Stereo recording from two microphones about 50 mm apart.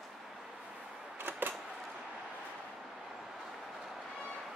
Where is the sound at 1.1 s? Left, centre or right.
Right.